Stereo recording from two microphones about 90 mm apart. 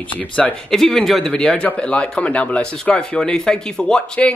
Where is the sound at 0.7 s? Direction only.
5° left (ahead or behind).